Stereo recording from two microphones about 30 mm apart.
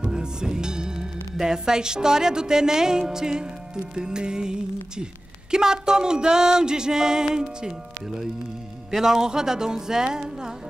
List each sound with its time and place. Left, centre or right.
0.0 s music: right
1.3 s a woman's voice: centre
8.9 s speech: centre